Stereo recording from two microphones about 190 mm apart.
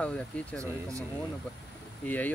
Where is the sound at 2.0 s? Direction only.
10° left (ahead or behind).